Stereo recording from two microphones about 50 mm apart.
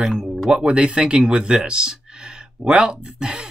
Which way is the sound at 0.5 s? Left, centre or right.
Right.